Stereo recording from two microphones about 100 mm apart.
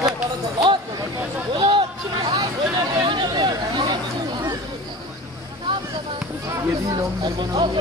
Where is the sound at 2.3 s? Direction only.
40° right (ahead or behind).